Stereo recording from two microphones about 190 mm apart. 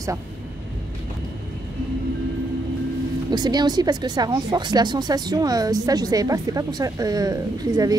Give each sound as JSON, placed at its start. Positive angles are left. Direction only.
{"t": 3.3, "sound": "speech", "side_deg": -20}